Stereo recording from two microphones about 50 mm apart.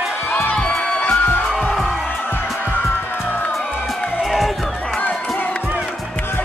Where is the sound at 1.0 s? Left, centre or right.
Left.